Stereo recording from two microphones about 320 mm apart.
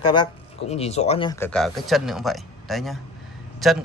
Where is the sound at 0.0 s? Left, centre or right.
Centre.